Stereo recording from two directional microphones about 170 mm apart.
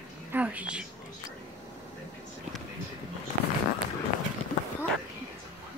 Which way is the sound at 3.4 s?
60° right (ahead or behind).